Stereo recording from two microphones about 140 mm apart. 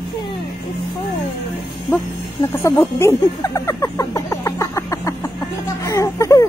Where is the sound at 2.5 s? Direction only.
15° left (ahead or behind).